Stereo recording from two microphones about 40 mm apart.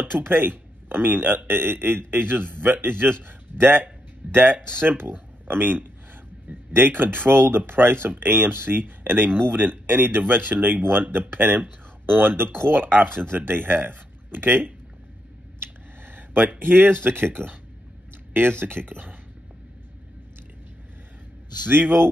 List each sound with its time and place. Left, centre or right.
0.0 s speech: right
4.6 s speech: centre
5.5 s speech: right
16.1 s a sound: right
16.5 s speech: right
21.6 s speech: right